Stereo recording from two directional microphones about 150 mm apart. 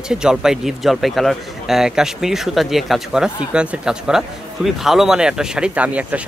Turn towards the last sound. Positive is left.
turn(degrees=-10)  # may be behind; listen again after turning